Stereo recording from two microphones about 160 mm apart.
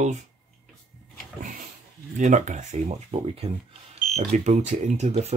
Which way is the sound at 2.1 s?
50° right (ahead or behind).